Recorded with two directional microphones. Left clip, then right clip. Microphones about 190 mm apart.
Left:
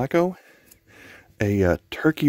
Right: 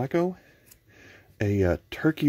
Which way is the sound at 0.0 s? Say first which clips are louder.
Left 5 dB; 35° left (ahead or behind).